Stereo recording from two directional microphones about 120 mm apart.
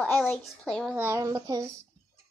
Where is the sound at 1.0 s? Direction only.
25° right (ahead or behind).